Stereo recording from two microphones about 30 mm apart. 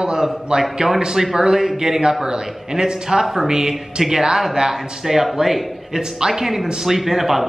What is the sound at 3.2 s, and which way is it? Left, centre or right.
A man's voice, centre.